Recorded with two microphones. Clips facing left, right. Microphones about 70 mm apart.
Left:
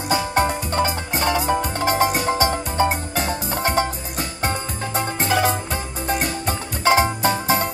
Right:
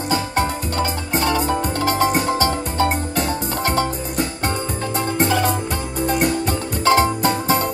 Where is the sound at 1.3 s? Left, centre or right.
Centre.